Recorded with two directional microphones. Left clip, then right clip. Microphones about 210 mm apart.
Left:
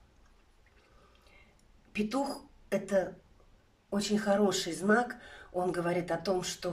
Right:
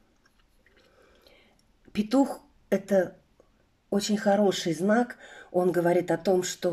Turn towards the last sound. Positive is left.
turn(degrees=-35)  # may be behind; listen again after turning